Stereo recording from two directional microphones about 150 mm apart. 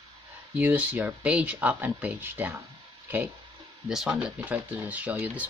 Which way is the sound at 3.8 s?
5° right (ahead or behind).